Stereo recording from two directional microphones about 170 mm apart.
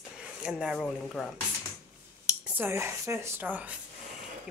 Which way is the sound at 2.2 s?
10° right (ahead or behind).